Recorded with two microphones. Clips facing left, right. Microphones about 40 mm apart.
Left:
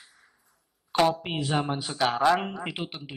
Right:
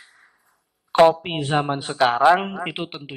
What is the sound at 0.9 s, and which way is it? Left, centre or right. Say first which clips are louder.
Speech: right 9 dB; right.